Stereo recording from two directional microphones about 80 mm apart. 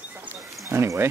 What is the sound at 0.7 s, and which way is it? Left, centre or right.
Speech, right.